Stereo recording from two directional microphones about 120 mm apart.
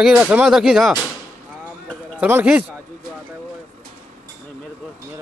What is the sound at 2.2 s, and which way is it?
Speech, 15° right (ahead or behind).